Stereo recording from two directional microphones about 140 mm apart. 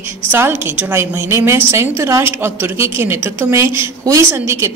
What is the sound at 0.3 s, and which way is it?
A woman's voice, 15° right (ahead or behind).